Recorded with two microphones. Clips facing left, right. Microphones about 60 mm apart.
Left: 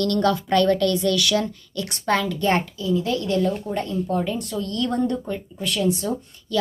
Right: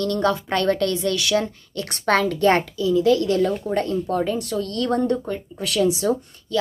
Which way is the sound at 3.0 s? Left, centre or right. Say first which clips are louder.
Right 6 dB; right.